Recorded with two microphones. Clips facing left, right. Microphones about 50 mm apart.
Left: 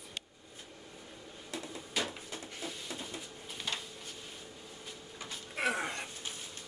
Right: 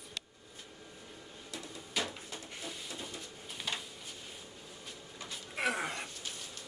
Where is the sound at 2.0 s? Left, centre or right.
Centre.